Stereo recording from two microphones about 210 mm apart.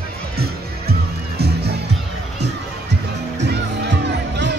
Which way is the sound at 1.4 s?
50° right (ahead or behind).